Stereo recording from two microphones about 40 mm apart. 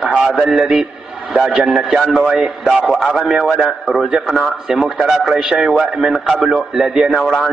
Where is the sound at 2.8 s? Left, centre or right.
Centre.